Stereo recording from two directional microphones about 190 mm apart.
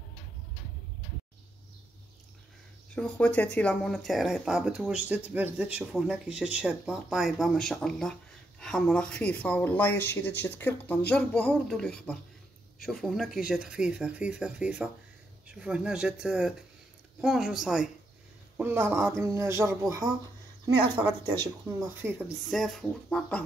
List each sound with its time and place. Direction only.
2.9 s speech: 5° left (ahead or behind); by 19.8 s 15° right (ahead or behind)
21.3 s speech: 20° right (ahead or behind)
22.5 s speech: centre (ahead or behind)